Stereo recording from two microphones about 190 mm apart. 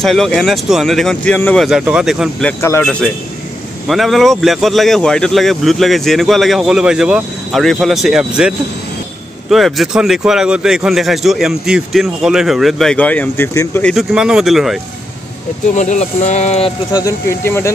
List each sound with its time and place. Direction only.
0.0 s speech: centre (ahead or behind)
2.6 s speech: 10° left (ahead or behind)
13.9 s speech: 5° right (ahead or behind)
15.7 s speech: 40° left (ahead or behind)
16.9 s speech: 15° left (ahead or behind)